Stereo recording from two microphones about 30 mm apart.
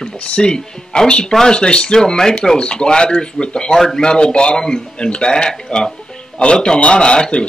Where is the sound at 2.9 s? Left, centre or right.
Left.